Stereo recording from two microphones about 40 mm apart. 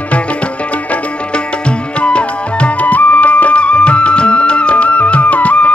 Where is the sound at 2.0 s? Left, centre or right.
Left.